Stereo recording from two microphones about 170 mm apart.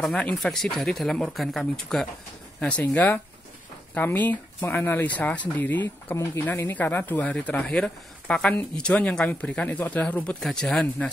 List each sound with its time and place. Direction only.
0.0 s speech: 5° left (ahead or behind)